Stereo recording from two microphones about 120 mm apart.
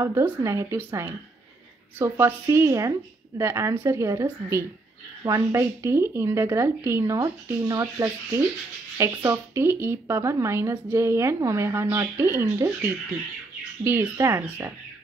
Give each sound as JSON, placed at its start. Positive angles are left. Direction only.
{"t": 0.0, "sound": "a woman's voice", "side_deg": -25}